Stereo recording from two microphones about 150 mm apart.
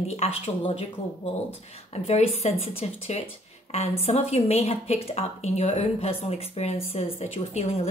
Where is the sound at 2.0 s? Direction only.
45° left (ahead or behind).